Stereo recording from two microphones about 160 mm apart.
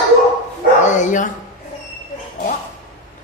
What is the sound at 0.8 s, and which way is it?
Bow-wow, 50° left (ahead or behind).